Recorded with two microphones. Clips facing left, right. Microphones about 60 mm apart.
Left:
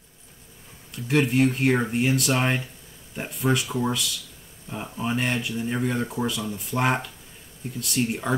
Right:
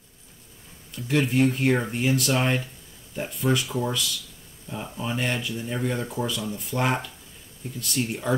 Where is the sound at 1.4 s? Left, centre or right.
Centre.